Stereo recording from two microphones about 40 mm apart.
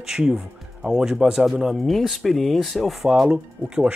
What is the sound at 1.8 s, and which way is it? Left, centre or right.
Speech, centre.